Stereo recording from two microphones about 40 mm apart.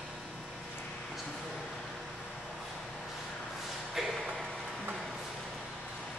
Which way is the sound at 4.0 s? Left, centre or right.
Centre.